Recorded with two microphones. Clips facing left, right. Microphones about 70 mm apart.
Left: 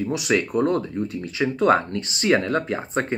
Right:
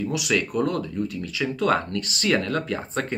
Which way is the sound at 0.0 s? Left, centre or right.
Left.